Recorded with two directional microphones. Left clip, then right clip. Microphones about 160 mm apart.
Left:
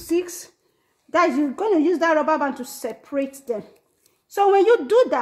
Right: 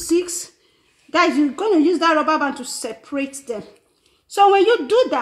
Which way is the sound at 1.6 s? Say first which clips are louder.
Right 1 dB; 10° left (ahead or behind).